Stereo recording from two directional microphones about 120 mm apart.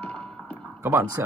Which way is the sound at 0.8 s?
20° right (ahead or behind).